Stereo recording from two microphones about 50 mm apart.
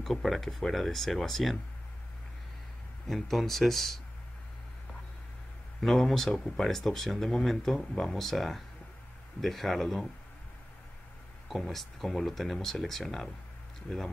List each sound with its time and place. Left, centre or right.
0.0 s speech: centre
3.1 s speech: centre
5.8 s speech: centre
11.4 s speech: centre